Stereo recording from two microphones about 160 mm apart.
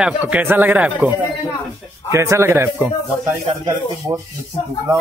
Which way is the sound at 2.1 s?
20° right (ahead or behind).